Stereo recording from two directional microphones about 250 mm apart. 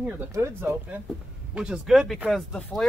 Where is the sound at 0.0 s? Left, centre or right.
Centre.